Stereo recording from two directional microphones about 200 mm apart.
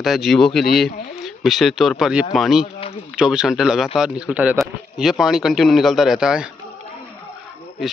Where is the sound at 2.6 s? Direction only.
30° left (ahead or behind).